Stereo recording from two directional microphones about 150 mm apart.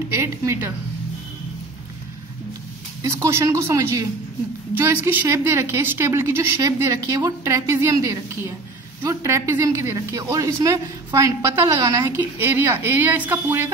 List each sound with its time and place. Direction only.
0.1 s a woman's voice: 15° right (ahead or behind)
3.0 s a woman's voice: 20° right (ahead or behind)